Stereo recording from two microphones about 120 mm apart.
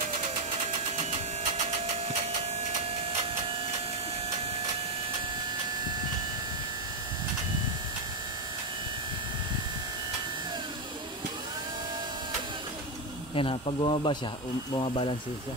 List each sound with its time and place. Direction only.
13.3 s speech: 50° left (ahead or behind)